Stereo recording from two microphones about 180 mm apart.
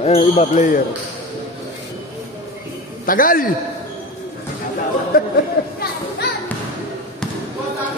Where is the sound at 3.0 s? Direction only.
50° left (ahead or behind).